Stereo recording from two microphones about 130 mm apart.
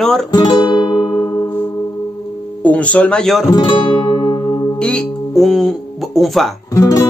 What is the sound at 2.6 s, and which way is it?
Speech, 10° left (ahead or behind).